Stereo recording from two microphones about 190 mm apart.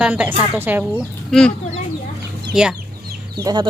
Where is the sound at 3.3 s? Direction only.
20° right (ahead or behind).